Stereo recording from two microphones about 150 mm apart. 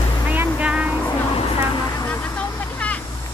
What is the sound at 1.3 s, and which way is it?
Vehicle, 25° left (ahead or behind).